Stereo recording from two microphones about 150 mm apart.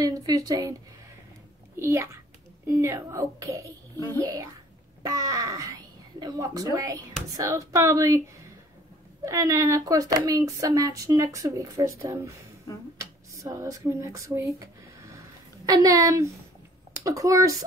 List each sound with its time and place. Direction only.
0.0 s speech: 25° right (ahead or behind)
1.8 s speech: 20° right (ahead or behind)
5.0 s speech: 25° right (ahead or behind)
9.2 s speech: 20° right (ahead or behind)
13.3 s speech: 20° right (ahead or behind)